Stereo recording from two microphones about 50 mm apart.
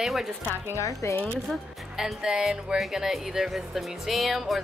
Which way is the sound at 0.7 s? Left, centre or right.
Left.